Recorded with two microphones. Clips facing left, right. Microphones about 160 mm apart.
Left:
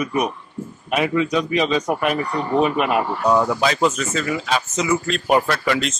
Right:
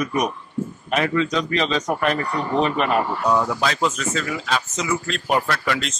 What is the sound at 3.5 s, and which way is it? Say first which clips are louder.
Speech: left 3 dB; 5° left (ahead or behind).